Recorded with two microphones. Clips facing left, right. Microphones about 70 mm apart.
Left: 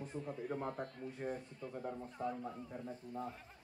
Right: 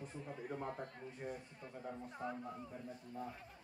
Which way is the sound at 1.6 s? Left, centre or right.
Right.